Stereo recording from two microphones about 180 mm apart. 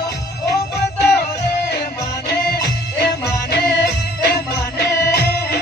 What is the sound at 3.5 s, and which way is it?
Music, 60° left (ahead or behind).